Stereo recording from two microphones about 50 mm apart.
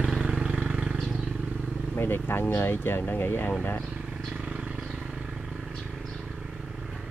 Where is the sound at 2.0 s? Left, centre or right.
Left.